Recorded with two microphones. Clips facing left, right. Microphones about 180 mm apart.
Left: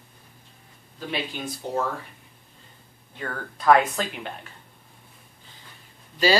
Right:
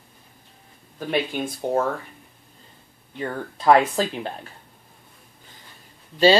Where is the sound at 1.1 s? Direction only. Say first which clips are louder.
Right 7 dB; 55° right (ahead or behind).